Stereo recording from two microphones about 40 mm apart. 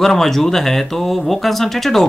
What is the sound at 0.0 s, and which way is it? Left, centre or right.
Speech, centre.